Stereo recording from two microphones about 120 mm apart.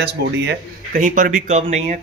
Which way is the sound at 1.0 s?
90° right.